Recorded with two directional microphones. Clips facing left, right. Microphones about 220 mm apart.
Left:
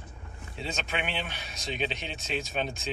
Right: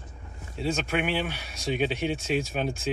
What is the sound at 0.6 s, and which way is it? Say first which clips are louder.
Speech: right 7 dB; 10° right (ahead or behind).